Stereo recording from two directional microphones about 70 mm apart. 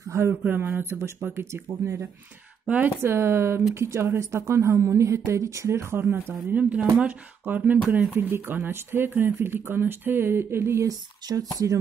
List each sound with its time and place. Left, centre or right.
0.1 s speech: right
0.4 s a woman's voice: right
6.5 s speech: centre; by 10.9 s right
10.9 s a woman's voice: right